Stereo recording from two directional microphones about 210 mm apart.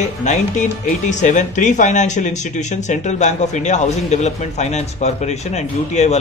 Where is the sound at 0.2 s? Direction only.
35° left (ahead or behind).